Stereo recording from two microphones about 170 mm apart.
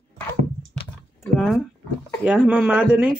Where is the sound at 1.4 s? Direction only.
Centre (ahead or behind).